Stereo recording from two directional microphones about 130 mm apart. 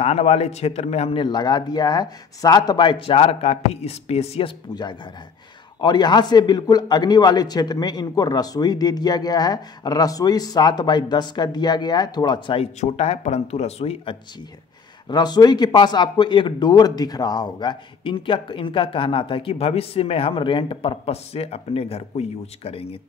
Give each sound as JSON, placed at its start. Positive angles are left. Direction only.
{"t": 0.0, "sound": "speech", "side_deg": 55}
{"t": 1.2, "sound": "a man's voice", "side_deg": 35}
{"t": 5.8, "sound": "a man's voice", "side_deg": 35}
{"t": 15.0, "sound": "a man's voice", "side_deg": 30}